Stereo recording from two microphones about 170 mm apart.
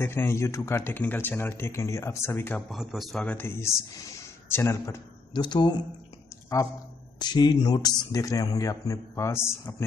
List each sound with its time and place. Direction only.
0.0 s speech: 15° left (ahead or behind)
2.8 s speech: centre (ahead or behind); by 5.8 s 25° left (ahead or behind)
7.2 s speech: 25° left (ahead or behind)